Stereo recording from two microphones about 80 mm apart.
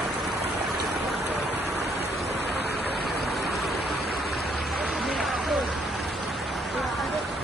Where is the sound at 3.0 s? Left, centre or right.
Centre.